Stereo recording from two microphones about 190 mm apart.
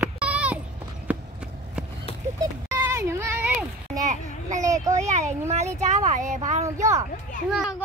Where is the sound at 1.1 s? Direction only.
10° right (ahead or behind).